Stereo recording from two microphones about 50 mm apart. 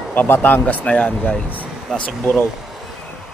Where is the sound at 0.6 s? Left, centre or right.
Left.